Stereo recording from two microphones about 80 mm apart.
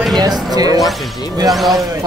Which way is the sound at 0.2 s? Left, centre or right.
Right.